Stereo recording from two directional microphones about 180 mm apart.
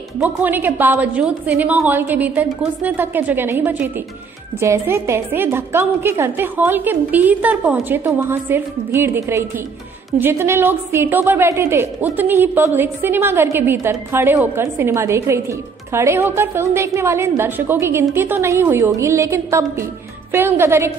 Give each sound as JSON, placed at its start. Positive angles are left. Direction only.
{"t": 0.2, "sound": "a woman's voice", "side_deg": -10}